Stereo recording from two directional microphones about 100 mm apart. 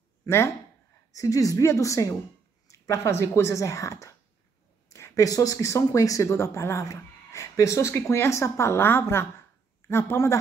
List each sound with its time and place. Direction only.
1.1 s a woman's voice: 35° left (ahead or behind)